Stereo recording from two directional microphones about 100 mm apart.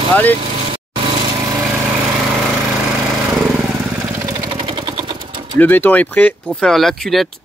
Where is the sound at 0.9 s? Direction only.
45° right (ahead or behind).